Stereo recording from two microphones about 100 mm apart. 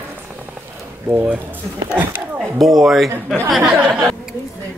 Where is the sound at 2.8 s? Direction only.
Centre (ahead or behind).